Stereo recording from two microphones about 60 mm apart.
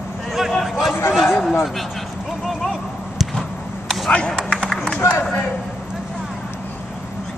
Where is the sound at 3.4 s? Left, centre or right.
Centre.